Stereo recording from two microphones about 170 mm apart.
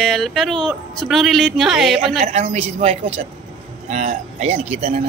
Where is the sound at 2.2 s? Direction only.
40° right (ahead or behind).